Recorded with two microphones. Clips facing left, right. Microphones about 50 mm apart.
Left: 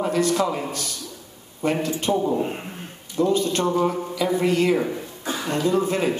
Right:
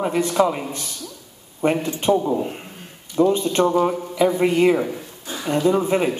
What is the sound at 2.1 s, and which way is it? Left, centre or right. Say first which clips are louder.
Speech: right 1 dB; centre.